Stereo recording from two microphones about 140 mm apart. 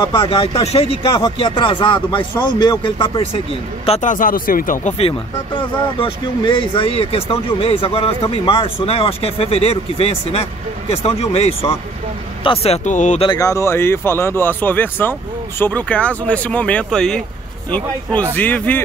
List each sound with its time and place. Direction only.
0.0 s speech: 35° left (ahead or behind)
4.0 s speech: 70° left (ahead or behind)
4.9 s speech: 40° left (ahead or behind); by 13.2 s 60° left (ahead or behind)
13.4 s speech: 20° left (ahead or behind); by 17.2 s 5° left (ahead or behind)
18.3 s speech: 10° left (ahead or behind)